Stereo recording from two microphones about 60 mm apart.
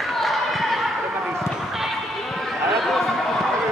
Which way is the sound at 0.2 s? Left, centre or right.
Centre.